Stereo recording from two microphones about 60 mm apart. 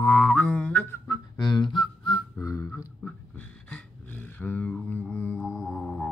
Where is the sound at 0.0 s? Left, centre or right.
Centre.